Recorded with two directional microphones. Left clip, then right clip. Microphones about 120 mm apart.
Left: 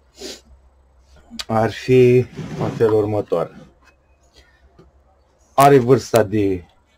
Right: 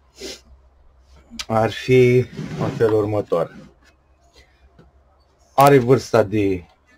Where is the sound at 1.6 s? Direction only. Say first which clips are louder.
Left 2 dB; 15° left (ahead or behind).